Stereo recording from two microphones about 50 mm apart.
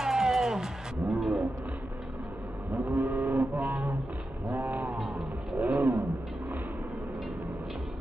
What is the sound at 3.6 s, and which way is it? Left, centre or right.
Music, right.